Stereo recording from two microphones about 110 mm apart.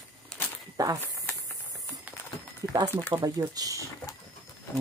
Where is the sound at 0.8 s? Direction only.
35° right (ahead or behind).